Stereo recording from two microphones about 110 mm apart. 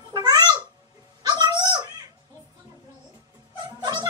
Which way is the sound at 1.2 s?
35° right (ahead or behind).